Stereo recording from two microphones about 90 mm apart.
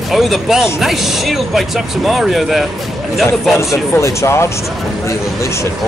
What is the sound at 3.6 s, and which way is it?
Speech, 35° left (ahead or behind).